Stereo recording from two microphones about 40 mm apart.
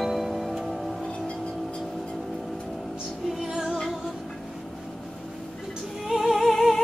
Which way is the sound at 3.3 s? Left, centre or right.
Centre.